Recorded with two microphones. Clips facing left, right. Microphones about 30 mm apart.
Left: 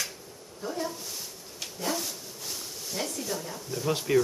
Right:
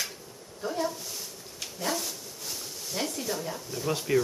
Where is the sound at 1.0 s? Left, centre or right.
Centre.